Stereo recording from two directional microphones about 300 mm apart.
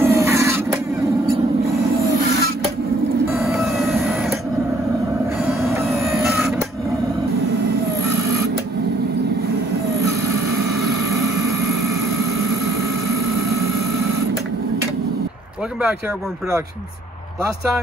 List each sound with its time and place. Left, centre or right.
0.0 s a sound: centre
3.3 s vehicle: centre
6.2 s printer: centre